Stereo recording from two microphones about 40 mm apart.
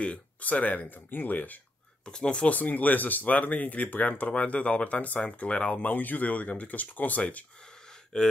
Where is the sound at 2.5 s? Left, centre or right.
Left.